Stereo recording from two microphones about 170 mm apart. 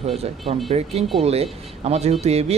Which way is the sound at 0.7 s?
35° right (ahead or behind).